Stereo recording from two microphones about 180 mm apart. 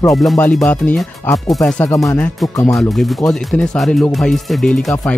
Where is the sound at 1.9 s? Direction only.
15° left (ahead or behind).